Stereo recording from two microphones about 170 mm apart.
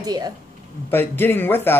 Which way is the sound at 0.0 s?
25° right (ahead or behind).